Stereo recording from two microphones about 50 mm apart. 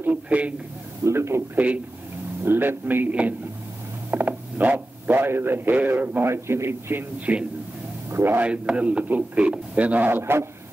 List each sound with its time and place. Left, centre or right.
0.1 s a sound: right
1.0 s a man's voice: right
1.5 s a man's voice: right
2.4 s a man's voice: right
3.1 s speech: right
6.2 s a man's voice: right
7.3 s speech: right
8.1 s a man's voice: right
8.4 s a man's voice: right